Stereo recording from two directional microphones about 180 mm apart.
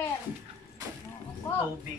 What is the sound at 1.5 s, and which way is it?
Speech, 10° left (ahead or behind).